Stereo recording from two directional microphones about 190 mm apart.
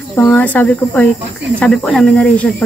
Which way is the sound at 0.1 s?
10° left (ahead or behind).